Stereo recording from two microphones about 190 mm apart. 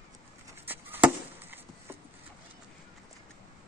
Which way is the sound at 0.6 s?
10° right (ahead or behind).